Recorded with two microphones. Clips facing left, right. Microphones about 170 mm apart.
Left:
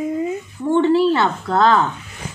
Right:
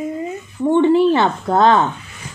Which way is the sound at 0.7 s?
15° right (ahead or behind).